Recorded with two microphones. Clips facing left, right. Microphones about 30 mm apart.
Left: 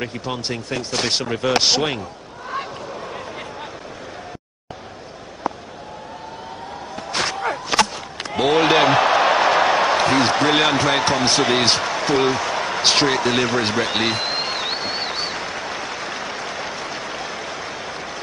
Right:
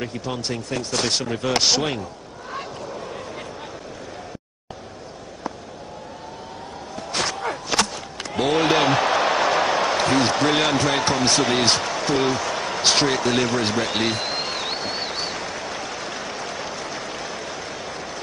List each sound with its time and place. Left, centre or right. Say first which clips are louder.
0.0 s speech: left 2 dB; centre
2.5 s fowl: left 3 dB; centre
7.0 s a sound: left 2 dB; centre